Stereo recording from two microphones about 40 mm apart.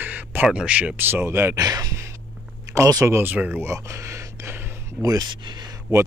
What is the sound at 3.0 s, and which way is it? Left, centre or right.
Speech, right.